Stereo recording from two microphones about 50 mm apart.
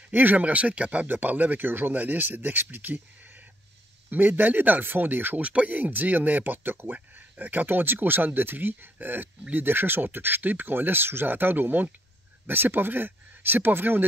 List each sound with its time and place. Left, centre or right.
0.1 s speech: right
1.0 s speech: right
5.4 s speech: right